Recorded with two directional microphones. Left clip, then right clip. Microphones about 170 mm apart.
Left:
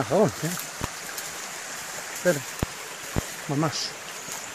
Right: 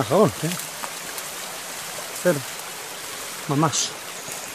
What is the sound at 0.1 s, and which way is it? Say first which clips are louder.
Speech: right 4 dB; 15° right (ahead or behind).